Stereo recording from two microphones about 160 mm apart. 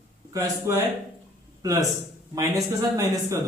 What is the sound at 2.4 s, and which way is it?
Speech, 20° right (ahead or behind).